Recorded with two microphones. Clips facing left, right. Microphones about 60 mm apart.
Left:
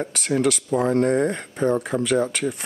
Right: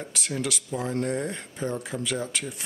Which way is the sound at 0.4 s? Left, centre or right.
Left.